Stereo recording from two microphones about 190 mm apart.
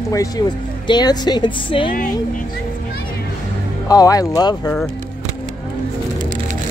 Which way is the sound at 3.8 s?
20° left (ahead or behind).